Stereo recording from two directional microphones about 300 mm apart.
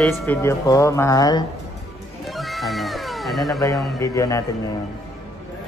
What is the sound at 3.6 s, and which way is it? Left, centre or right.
Speech, centre.